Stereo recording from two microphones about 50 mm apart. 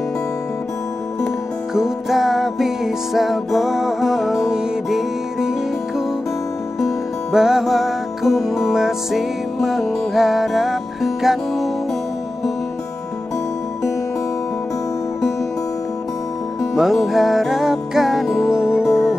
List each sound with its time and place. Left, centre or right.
1.7 s music: centre
7.3 s music: centre
16.7 s music: centre
18.5 s music: centre